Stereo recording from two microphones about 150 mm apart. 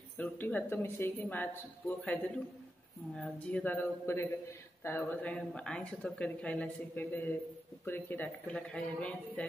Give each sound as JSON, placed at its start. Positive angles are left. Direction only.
{"t": 0.2, "sound": "a man's voice", "side_deg": 10}